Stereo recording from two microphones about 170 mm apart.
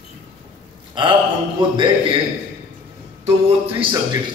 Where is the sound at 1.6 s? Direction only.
30° right (ahead or behind).